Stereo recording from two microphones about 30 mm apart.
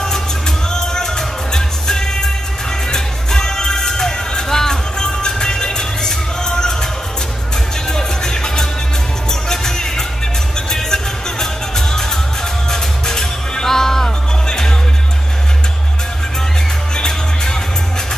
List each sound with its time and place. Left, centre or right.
0.7 s music: centre
7.9 s music: left
16.9 s music: left